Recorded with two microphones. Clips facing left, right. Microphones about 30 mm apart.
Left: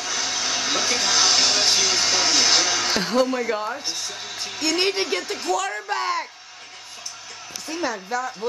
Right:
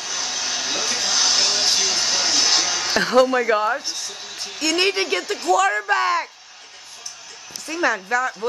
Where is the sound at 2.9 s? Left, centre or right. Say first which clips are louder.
Right 7 dB; centre.